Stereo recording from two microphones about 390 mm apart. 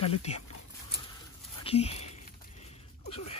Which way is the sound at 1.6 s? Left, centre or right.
Centre.